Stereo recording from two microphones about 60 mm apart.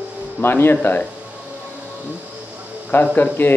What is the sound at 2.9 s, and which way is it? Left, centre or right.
Speech, left.